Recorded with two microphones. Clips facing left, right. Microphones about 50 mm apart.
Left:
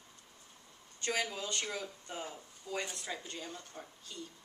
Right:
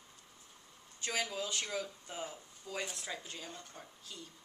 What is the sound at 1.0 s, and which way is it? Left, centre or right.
Speech, centre.